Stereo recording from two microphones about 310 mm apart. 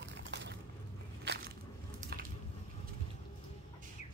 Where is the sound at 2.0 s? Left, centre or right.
Right.